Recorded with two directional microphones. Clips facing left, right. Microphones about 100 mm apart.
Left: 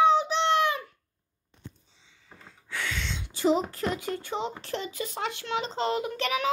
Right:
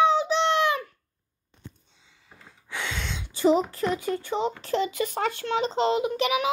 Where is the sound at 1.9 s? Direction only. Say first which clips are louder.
Even; 5° right (ahead or behind).